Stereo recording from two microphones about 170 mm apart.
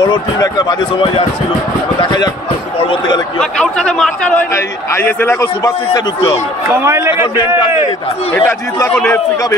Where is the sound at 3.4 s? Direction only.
5° left (ahead or behind); by 6.4 s 20° left (ahead or behind).